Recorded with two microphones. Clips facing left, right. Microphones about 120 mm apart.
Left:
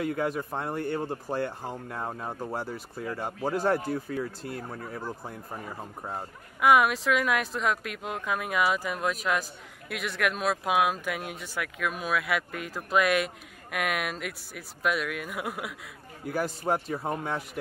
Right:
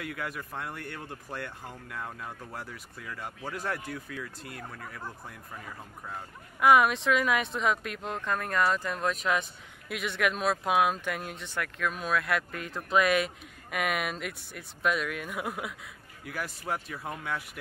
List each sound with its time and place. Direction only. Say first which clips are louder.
0.0 s speech: left 8 dB; 30° left (ahead or behind)
6.6 s speech: even; centre (ahead or behind)
16.3 s speech: left 7 dB; 35° left (ahead or behind)